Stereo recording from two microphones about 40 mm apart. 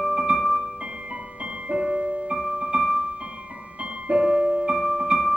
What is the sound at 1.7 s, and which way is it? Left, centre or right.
Keyboard, centre.